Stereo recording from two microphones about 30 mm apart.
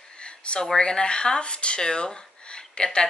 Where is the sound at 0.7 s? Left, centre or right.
Left.